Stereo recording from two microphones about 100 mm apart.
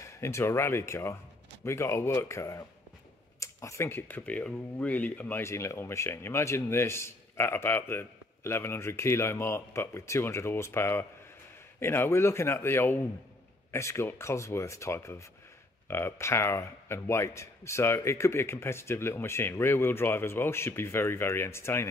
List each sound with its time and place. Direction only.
0.0 s speech: 30° left (ahead or behind)